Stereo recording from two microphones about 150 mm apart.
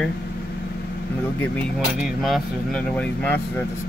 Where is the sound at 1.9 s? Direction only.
Centre (ahead or behind).